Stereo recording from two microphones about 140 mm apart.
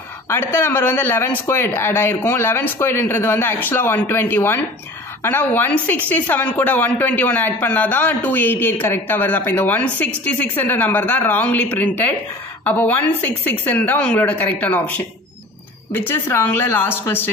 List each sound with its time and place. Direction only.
0.3 s a man's voice: 15° left (ahead or behind)